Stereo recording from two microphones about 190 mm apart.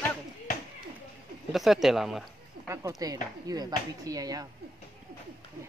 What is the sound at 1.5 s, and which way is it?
Speech, centre (ahead or behind).